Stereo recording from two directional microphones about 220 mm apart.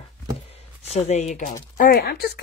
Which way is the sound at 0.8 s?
30° left (ahead or behind).